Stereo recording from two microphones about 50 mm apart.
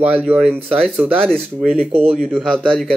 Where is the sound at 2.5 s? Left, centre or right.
Centre.